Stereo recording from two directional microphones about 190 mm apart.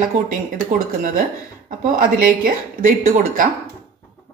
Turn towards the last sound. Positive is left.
turn(degrees=-45)  # may be behind; listen again after turning